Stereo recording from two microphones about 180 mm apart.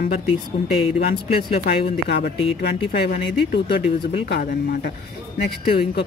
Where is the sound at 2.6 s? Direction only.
65° left (ahead or behind).